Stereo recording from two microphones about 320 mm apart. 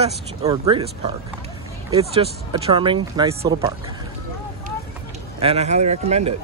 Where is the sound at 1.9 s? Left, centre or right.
Centre.